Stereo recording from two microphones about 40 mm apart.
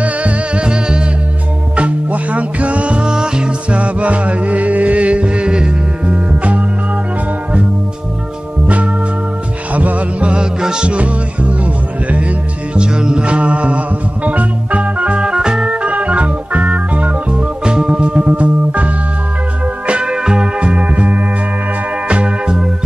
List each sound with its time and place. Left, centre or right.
0.0 s music: right
0.7 s music: right
1.8 s music: right
9.8 s music: right
10.2 s music: right
12.7 s music: right
15.2 s organ: centre; by 17.4 s right
17.6 s music: right
19.9 s music: right
20.7 s music: right